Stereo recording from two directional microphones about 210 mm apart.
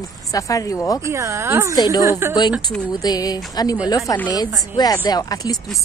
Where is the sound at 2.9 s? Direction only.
20° left (ahead or behind).